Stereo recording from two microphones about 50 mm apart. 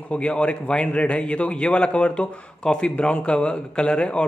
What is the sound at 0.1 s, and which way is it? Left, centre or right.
Speech, left.